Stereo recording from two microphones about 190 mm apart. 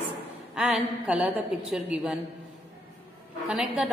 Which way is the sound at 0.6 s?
5° right (ahead or behind).